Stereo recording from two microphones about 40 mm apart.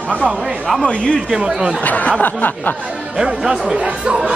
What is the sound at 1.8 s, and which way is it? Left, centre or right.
Speech, left.